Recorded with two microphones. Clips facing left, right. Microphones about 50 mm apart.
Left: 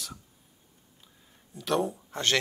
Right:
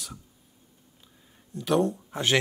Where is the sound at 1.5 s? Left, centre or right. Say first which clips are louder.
Right 4 dB; centre.